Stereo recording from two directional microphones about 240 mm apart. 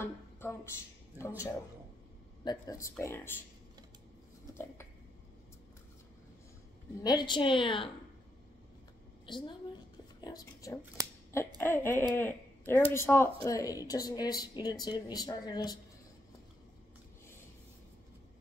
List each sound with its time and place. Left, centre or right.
0.0 s a sound: centre
1.1 s speech: centre
7.0 s a woman's voice: centre
9.2 s a woman's voice: centre